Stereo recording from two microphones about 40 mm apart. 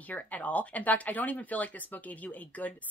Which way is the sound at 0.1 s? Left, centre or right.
Left.